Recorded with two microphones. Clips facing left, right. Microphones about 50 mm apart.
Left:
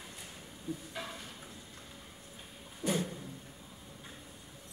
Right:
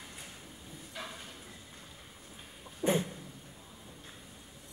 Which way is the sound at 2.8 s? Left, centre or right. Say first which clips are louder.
Right 4 dB; right.